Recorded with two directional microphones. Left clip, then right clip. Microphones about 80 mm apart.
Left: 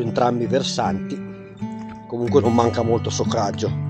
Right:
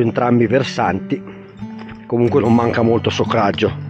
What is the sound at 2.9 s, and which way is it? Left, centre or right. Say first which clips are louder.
Speech: right 5 dB; right.